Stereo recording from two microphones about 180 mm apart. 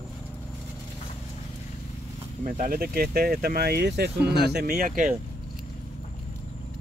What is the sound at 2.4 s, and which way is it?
Speech, 50° right (ahead or behind).